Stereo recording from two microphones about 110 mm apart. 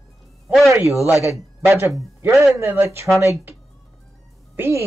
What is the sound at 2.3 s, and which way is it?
Speech, centre (ahead or behind).